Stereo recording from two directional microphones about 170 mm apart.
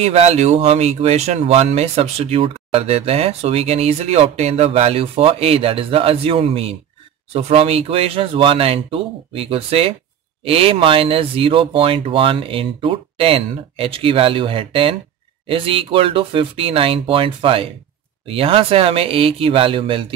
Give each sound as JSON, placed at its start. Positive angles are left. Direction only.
{"t": 0.0, "sound": "speech", "side_deg": -40}